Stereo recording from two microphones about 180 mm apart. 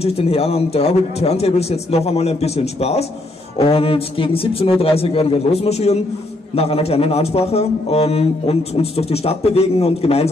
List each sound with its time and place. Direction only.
0.0 s a man's voice: 35° left (ahead or behind)